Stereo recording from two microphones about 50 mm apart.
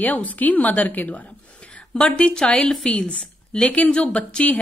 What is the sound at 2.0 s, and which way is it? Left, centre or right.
Speech, centre.